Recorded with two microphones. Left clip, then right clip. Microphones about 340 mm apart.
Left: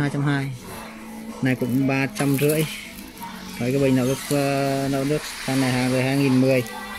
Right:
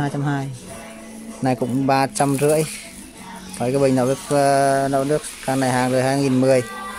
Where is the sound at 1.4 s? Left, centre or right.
Right.